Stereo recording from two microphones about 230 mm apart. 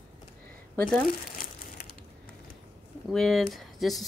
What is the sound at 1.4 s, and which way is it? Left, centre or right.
Crumpling, left.